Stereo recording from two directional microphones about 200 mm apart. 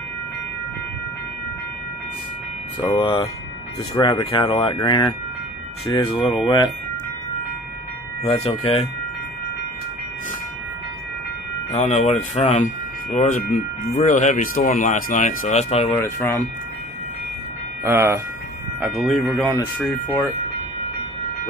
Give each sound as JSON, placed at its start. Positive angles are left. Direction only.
{"t": 2.9, "sound": "speech", "side_deg": 25}
{"t": 8.2, "sound": "speech", "side_deg": 30}
{"t": 11.7, "sound": "speech", "side_deg": 30}
{"t": 15.9, "sound": "speech", "side_deg": 15}
{"t": 17.8, "sound": "speech", "side_deg": -10}
{"t": 18.8, "sound": "speech", "side_deg": 0}